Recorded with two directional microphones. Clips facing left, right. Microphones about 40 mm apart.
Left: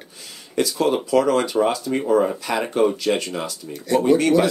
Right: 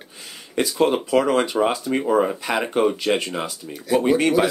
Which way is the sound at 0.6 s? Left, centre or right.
Right.